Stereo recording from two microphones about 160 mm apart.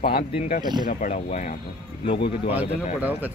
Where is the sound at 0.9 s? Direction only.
50° left (ahead or behind).